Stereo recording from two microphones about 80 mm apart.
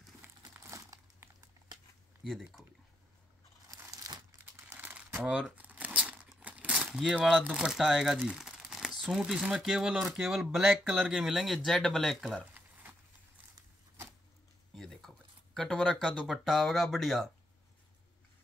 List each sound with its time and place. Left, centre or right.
0.2 s crumpling: right
1.2 s a sound: right
2.2 s speech: centre
3.7 s crumpling: right
4.6 s crumpling: right
5.6 s crumpling: centre
6.9 s speech: centre
7.8 s crumpling: centre
9.1 s speech: centre
12.5 s a sound: right
14.8 s speech: centre